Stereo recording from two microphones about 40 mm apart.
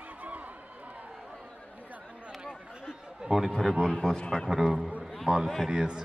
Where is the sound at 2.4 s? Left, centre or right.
Centre.